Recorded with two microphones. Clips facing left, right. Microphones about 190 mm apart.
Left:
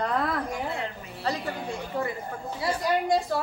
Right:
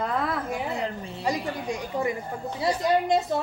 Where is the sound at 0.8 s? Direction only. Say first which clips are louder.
Right 5 dB; 30° right (ahead or behind).